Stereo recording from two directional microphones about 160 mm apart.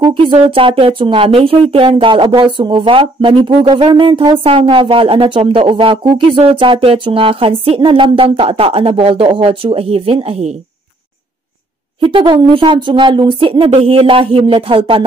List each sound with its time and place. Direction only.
0.0 s speech: 35° right (ahead or behind)
12.0 s speech: 30° right (ahead or behind)